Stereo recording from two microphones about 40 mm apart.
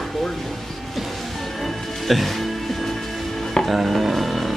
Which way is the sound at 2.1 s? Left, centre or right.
Centre.